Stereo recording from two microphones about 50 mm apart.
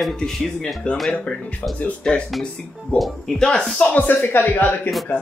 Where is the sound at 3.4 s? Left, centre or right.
Centre.